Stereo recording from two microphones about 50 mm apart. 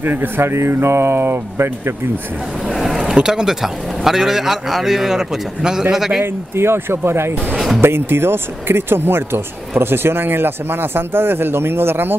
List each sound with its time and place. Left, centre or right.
0.0 s speech: right
2.7 s speech: centre
6.2 s speech: right
7.5 s speech: centre
7.8 s speech: right